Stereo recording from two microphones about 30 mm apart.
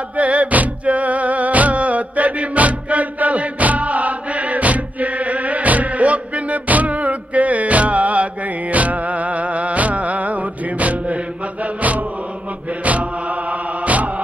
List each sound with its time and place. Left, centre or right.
0.2 s music: right
11.6 s chant: right
12.8 s mantra: right